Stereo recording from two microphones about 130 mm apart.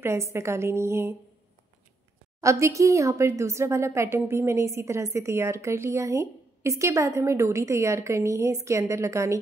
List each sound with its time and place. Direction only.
0.0 s speech: 20° right (ahead or behind)
2.4 s speech: 25° right (ahead or behind)